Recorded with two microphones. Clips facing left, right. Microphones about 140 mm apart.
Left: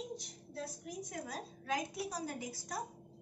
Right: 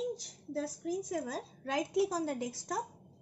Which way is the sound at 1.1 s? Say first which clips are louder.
Right 7 dB; 90° right.